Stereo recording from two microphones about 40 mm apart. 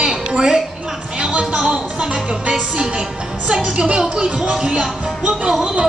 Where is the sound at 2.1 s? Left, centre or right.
Right.